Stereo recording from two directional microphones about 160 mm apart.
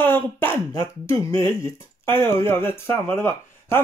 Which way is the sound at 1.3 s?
30° right (ahead or behind).